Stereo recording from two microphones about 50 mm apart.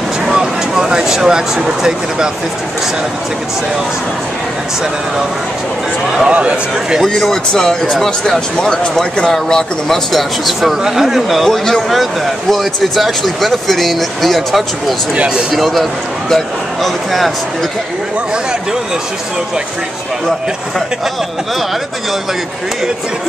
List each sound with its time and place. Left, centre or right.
0.2 s speech: centre
6.2 s speech: right
7.1 s speech: centre
10.1 s speech: centre
11.4 s speech: centre
15.1 s speech: centre
15.5 s a man's voice: centre